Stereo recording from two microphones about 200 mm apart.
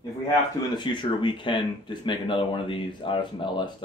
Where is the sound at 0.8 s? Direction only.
25° left (ahead or behind).